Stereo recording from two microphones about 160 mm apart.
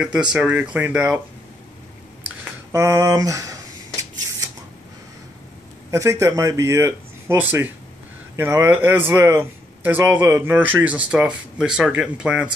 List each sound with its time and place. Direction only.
0.0 s a man's voice: 5° right (ahead or behind)
2.7 s speech: 20° right (ahead or behind)
5.9 s a man's voice: 20° right (ahead or behind)